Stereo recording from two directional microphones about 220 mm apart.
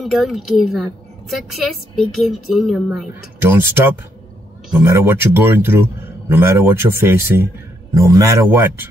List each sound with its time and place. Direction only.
0.0 s speech: centre (ahead or behind)